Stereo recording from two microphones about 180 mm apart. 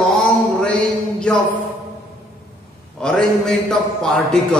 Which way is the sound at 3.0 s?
5° left (ahead or behind).